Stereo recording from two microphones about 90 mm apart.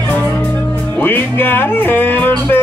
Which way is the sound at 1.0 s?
25° left (ahead or behind).